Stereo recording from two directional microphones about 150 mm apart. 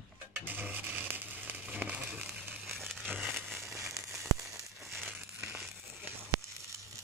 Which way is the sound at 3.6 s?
20° right (ahead or behind).